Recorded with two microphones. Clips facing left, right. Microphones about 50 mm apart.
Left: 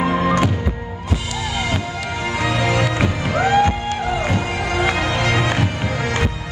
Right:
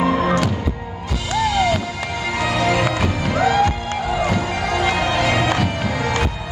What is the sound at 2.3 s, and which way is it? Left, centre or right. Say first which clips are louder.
Music: right 1 dB; centre.